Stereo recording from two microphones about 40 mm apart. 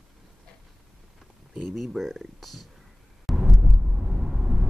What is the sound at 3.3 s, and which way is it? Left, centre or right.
Vehicle, centre.